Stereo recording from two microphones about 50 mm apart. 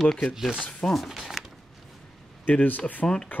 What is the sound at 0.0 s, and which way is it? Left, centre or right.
Speech, centre.